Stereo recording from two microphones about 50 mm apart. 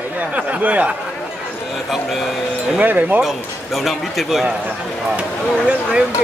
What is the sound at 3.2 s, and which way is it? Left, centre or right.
Speech, centre.